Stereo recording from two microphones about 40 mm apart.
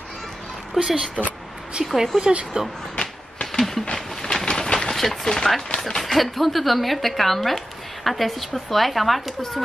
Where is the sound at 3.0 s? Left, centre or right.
Centre.